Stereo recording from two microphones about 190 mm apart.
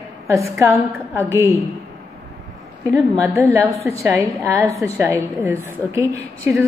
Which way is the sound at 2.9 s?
15° right (ahead or behind).